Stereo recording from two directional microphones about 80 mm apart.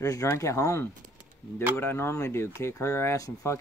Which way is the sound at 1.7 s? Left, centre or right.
Left.